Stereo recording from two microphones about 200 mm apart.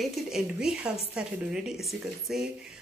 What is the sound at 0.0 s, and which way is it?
A woman's voice, 5° right (ahead or behind).